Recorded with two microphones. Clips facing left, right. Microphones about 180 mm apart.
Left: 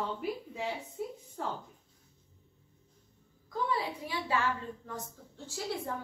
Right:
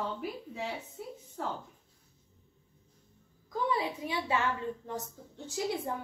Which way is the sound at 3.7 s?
20° right (ahead or behind).